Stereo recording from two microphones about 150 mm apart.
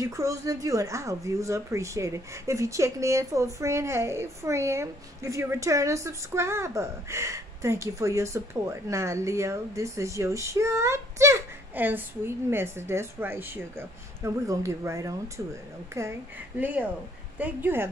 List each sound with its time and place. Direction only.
0.0 s speech: 20° right (ahead or behind)